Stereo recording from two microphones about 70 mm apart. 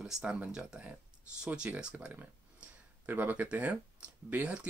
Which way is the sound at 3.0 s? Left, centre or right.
Right.